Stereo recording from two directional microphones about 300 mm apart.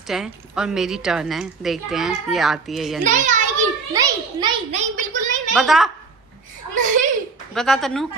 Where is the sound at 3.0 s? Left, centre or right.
Right.